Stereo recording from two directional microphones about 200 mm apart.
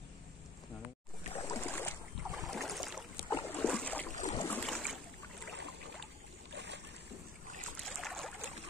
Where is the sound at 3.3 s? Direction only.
10° left (ahead or behind).